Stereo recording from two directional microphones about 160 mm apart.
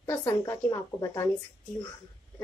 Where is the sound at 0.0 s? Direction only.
15° left (ahead or behind).